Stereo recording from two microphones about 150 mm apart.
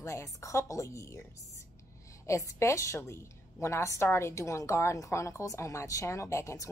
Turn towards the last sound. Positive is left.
turn(degrees=20)  # may be behind; listen again after turning